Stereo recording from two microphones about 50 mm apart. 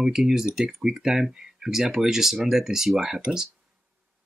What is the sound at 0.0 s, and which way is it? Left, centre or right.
Speech, centre.